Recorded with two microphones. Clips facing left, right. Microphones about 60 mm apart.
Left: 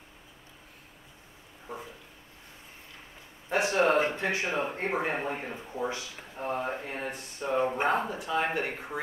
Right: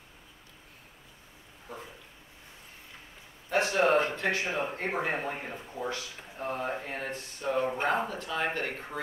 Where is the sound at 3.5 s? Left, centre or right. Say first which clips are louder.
Even; centre.